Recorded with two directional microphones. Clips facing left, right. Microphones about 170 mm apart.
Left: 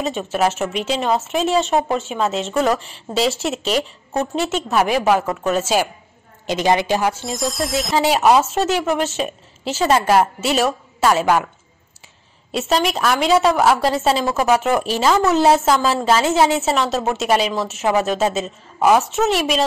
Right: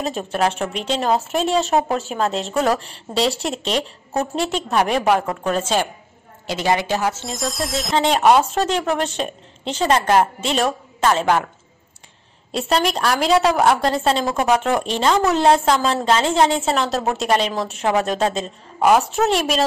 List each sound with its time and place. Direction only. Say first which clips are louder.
0.0 s a woman's voice: left 1 dB; centre (ahead or behind)
6.4 s a woman's voice: left 3 dB; 20° left (ahead or behind)
7.2 s a woman's voice: left 3 dB; centre (ahead or behind)
12.5 s a woman's voice: left 1 dB; centre (ahead or behind)